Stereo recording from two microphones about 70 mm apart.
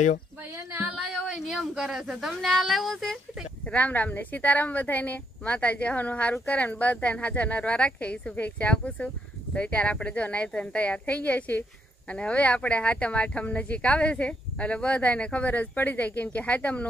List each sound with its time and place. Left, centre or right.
0.7 s music: right
0.9 s a sound: centre
1.2 s speech: centre
3.6 s a woman's voice: left